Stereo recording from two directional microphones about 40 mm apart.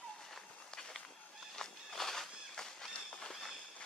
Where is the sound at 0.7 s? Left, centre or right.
Centre.